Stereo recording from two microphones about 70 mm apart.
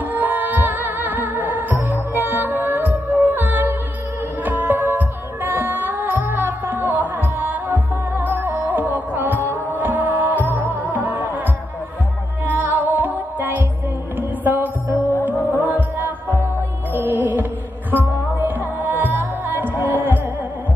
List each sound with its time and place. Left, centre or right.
0.1 s music: right
12.4 s music: right
16.9 s music: right
18.8 s music: right